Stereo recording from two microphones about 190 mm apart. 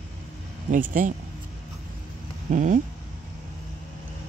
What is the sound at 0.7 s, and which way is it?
Speech, 45° right (ahead or behind).